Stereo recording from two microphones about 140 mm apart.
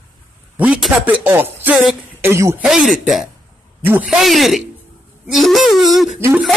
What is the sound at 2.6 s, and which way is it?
Speech, 5° right (ahead or behind).